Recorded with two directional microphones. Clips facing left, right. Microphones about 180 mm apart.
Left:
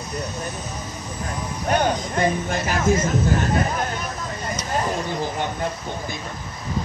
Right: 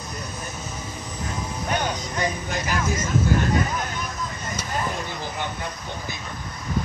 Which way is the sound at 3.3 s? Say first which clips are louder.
Left 1 dB; 45° left (ahead or behind).